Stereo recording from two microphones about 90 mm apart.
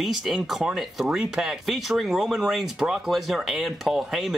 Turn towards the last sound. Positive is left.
turn(degrees=0)  # may be behind; listen again after turning